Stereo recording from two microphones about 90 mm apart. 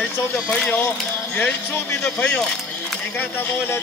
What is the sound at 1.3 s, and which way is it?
Speech, 25° left (ahead or behind).